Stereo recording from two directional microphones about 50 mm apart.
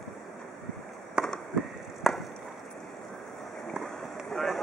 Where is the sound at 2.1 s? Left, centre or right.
Centre.